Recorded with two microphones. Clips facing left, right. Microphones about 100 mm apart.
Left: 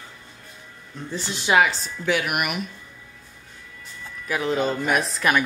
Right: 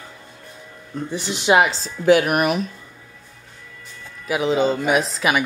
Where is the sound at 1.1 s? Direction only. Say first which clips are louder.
Right 2 dB; 70° right (ahead or behind).